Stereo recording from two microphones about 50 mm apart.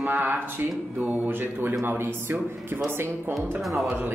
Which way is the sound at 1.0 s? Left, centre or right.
Right.